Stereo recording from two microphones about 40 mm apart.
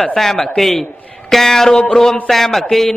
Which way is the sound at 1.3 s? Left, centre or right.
Centre.